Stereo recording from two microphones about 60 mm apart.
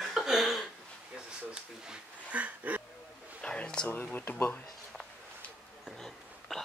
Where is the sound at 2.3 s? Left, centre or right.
Right.